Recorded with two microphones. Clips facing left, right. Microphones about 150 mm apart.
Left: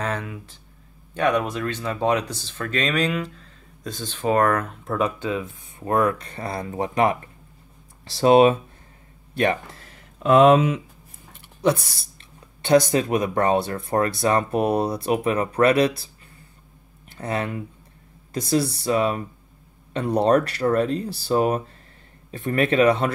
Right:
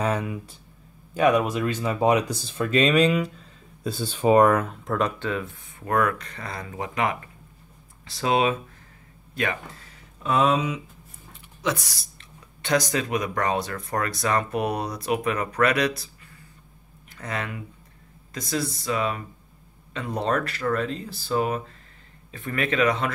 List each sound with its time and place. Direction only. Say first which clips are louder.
0.0 s speech: right 3 dB; 10° right (ahead or behind)
4.8 s speech: left 1 dB; 10° left (ahead or behind)
5.8 s speech: left 3 dB; 25° left (ahead or behind)
10.2 s speech: left 8 dB; 55° left (ahead or behind)
12.6 s speech: left 7 dB; 30° left (ahead or behind)
17.2 s speech: left 5 dB; 30° left (ahead or behind)